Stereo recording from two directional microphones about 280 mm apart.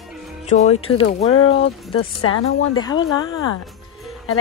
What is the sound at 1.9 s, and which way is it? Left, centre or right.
Speech, left.